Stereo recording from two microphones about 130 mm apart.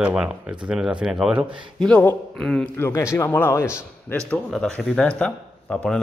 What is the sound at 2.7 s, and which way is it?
A man's voice, 20° left (ahead or behind).